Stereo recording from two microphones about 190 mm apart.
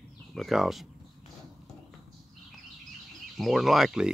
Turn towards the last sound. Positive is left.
turn(degrees=-5)  # may be behind; listen again after turning